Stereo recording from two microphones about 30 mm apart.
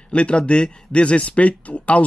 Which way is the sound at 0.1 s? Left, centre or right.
Left.